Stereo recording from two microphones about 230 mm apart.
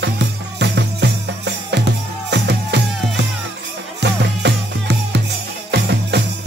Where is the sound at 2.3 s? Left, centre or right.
Right.